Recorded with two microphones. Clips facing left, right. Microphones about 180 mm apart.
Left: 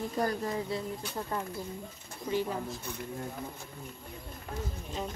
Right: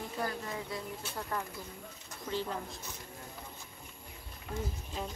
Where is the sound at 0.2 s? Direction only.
40° left (ahead or behind).